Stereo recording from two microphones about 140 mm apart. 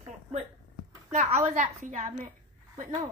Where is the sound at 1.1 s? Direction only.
55° right (ahead or behind).